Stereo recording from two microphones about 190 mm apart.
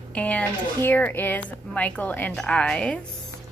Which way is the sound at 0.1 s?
5° left (ahead or behind).